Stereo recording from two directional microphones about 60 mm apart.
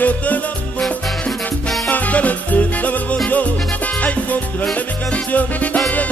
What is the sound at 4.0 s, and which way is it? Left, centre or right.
Salsa music, left.